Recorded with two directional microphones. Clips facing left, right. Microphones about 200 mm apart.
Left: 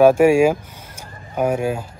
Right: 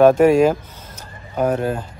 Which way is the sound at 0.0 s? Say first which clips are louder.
Even; 10° left (ahead or behind).